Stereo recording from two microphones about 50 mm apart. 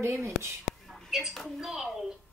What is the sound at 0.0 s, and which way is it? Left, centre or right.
Speech, right.